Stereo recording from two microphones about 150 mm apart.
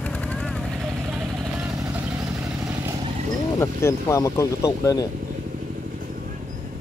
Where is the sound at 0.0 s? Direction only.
10° left (ahead or behind).